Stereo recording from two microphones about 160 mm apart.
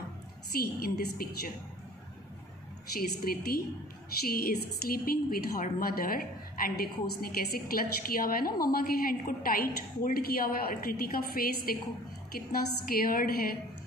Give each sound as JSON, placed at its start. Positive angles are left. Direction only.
{"t": 0.6, "sound": "a woman's voice", "side_deg": 70}
{"t": 3.0, "sound": "a woman's voice", "side_deg": 70}